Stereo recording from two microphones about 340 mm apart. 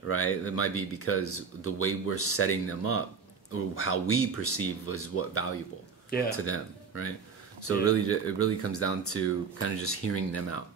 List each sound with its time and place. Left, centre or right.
0.1 s speech: left
6.0 s speech: left